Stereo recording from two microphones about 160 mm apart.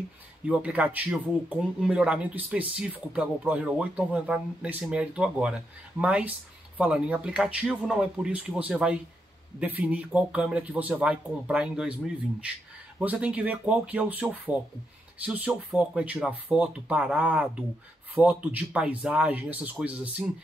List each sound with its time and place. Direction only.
0.5 s speech: 10° right (ahead or behind)
13.0 s speech: 10° right (ahead or behind)